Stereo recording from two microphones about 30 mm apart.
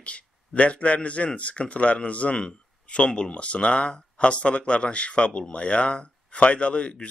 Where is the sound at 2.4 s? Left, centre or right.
Left.